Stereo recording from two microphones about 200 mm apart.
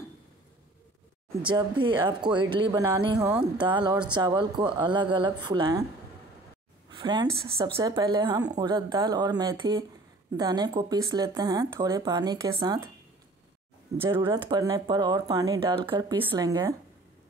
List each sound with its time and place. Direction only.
1.4 s speech: 25° right (ahead or behind)
3.2 s speech: 10° right (ahead or behind)
3.5 s speech: 25° right (ahead or behind)
6.9 s speech: 20° right (ahead or behind)
14.1 s speech: 25° right (ahead or behind)